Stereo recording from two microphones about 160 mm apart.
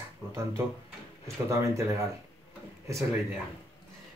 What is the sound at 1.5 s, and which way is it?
Speech, 15° right (ahead or behind).